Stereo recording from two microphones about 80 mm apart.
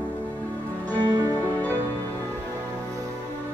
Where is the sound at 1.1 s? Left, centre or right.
Right.